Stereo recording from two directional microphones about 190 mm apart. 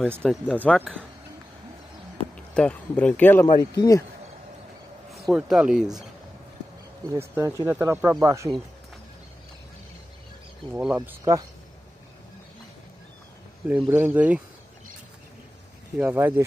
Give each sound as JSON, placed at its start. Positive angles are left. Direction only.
{"t": 0.2, "sound": "speech", "side_deg": 5}
{"t": 2.3, "sound": "speech", "side_deg": 5}
{"t": 5.1, "sound": "speech", "side_deg": 0}
{"t": 7.1, "sound": "speech", "side_deg": -15}
{"t": 11.0, "sound": "speech", "side_deg": -15}
{"t": 13.7, "sound": "speech", "side_deg": -10}
{"t": 16.0, "sound": "speech", "side_deg": -10}